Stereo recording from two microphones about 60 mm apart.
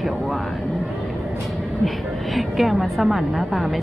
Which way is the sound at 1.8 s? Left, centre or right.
Centre.